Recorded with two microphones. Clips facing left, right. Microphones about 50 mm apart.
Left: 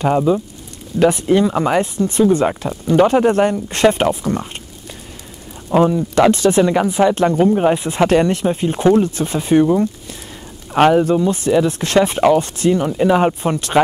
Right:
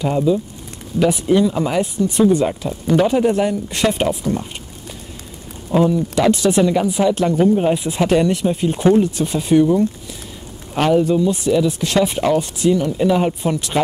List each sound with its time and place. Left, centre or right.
0.3 s speech: left
5.7 s speech: left
10.7 s speech: left
12.9 s speech: left